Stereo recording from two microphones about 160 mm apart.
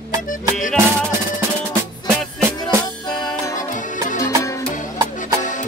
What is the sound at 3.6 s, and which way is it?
Music, 50° left (ahead or behind).